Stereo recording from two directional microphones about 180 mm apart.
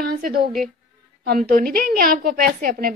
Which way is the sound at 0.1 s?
55° right (ahead or behind).